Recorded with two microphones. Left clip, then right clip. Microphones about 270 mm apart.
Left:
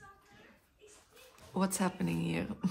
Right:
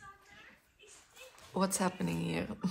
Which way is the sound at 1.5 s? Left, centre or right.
Centre.